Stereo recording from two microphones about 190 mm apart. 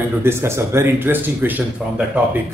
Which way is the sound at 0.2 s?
15° right (ahead or behind).